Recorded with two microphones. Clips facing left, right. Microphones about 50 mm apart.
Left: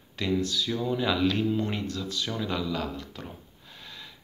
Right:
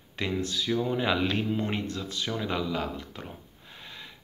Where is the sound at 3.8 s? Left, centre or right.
Centre.